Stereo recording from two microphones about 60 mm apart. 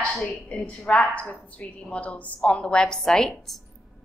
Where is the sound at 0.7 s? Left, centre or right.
Left; by 3.6 s centre.